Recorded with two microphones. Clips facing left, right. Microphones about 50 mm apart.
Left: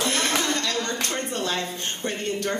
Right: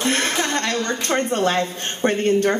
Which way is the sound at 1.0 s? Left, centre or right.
Right.